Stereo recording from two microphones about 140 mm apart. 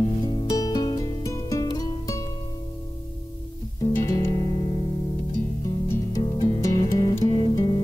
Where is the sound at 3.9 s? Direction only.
20° left (ahead or behind).